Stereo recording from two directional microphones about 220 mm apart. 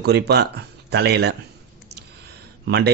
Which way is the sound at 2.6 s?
50° right (ahead or behind).